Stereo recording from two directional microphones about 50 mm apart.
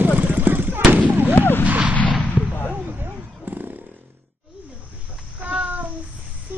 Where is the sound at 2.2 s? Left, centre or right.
Left.